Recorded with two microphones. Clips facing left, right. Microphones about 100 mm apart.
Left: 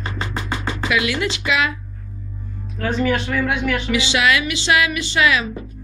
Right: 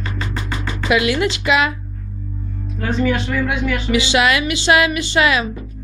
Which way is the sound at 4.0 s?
45° right (ahead or behind).